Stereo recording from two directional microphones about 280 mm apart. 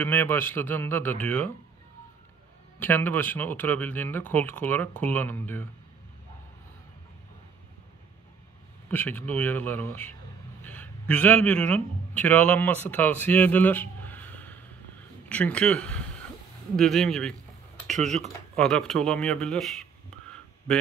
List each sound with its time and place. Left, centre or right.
0.0 s speech: centre
2.8 s speech: centre
8.9 s a man's voice: centre
17.9 s speech: right
18.6 s speech: centre